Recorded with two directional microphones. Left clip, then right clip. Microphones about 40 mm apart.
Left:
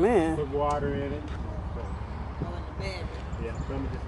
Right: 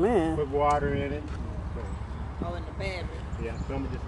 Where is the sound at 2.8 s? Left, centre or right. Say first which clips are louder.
Right 2 dB; right.